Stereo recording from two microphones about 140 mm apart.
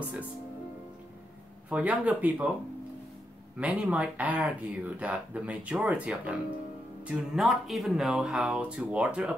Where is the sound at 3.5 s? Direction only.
10° right (ahead or behind).